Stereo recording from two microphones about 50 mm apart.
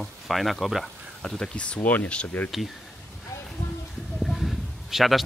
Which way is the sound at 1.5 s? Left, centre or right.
Left.